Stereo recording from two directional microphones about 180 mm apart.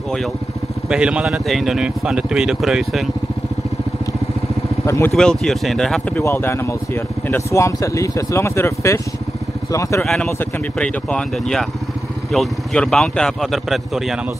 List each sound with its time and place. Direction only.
0.8 s speech: 5° right (ahead or behind)
4.8 s speech: 15° left (ahead or behind)
5.1 s speech: 5° left (ahead or behind)
10.0 s speech: 5° left (ahead or behind)